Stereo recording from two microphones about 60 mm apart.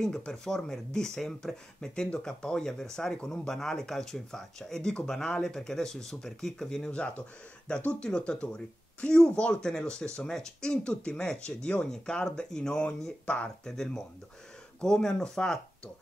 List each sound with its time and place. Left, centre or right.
0.0 s speech: centre
6.9 s speech: centre